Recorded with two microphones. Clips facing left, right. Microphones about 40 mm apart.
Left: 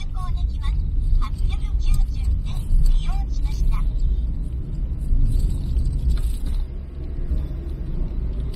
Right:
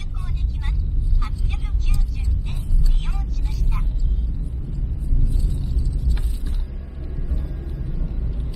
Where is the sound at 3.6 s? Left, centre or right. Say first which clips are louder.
Right 2 dB; right.